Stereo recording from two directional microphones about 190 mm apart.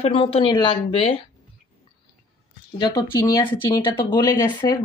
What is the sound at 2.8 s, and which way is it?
Speech, 20° left (ahead or behind).